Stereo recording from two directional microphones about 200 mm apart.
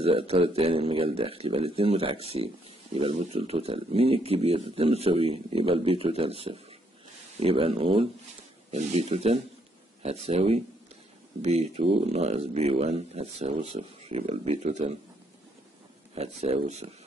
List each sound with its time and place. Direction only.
0.0 s speech: 30° right (ahead or behind)
16.2 s speech: 30° right (ahead or behind)